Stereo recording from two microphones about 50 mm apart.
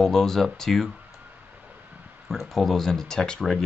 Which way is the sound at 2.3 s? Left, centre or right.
Centre.